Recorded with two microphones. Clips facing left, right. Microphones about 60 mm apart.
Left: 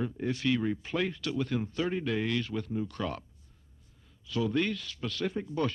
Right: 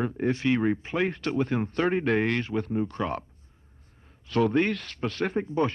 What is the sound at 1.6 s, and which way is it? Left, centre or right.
Speech, right.